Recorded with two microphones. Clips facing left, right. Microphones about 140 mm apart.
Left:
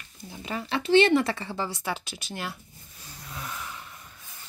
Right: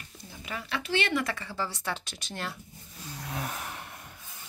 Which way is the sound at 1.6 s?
10° left (ahead or behind).